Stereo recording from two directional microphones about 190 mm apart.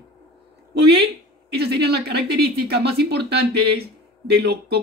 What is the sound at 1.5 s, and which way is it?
Speech, 60° right (ahead or behind).